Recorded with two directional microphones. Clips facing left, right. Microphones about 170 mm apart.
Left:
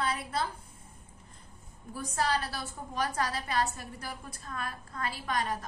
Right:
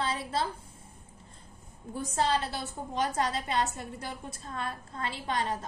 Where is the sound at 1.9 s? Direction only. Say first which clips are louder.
Right 2 dB; 25° right (ahead or behind).